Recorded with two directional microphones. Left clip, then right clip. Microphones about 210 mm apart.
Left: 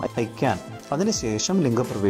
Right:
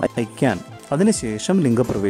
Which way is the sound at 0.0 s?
30° right (ahead or behind).